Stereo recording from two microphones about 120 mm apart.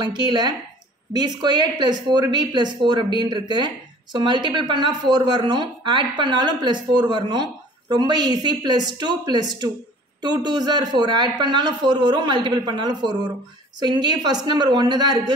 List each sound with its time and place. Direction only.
0.0 s speech: 40° right (ahead or behind)